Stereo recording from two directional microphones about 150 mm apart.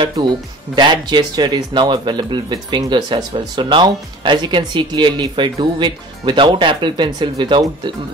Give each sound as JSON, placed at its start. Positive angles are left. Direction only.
{"t": 0.7, "sound": "speech", "side_deg": -30}